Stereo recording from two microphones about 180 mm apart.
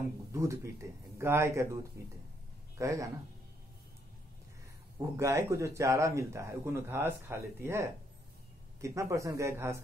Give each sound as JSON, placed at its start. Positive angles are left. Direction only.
{"t": 0.3, "sound": "speech", "side_deg": -15}
{"t": 4.9, "sound": "speech", "side_deg": -15}